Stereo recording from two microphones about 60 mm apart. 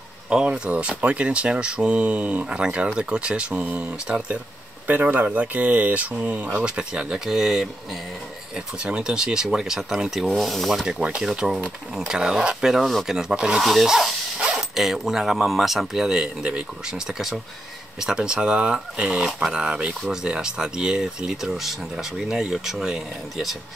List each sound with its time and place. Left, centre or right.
0.3 s speech: centre
5.0 s speech: right; by 8.0 s centre
8.5 s speech: centre
11.0 s speech: centre